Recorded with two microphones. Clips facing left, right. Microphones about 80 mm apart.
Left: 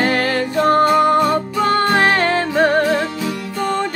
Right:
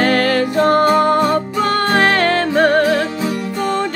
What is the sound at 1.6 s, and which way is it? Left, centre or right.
Music, left.